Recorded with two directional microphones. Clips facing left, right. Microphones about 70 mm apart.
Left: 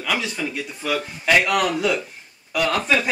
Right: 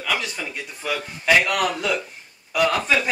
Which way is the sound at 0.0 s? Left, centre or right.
Centre.